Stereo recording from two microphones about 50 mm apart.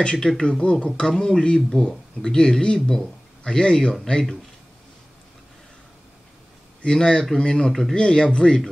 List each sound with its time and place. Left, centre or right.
0.0 s speech: centre
6.8 s speech: centre